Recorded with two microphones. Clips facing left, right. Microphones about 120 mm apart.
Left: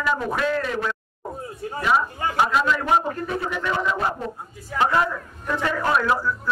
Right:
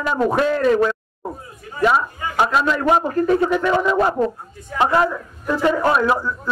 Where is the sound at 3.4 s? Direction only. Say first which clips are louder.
Right 8 dB; 45° right (ahead or behind).